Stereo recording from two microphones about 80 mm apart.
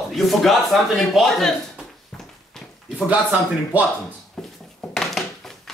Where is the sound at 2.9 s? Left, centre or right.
Centre.